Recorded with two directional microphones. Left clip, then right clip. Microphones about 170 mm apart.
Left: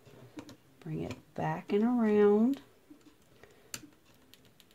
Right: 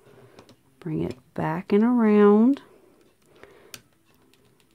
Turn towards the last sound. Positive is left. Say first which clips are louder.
# right 9 dB
turn(degrees=-50)  # may be behind; listen again after turning